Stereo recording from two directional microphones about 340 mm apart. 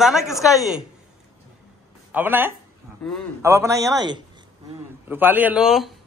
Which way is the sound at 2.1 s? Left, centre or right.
Centre.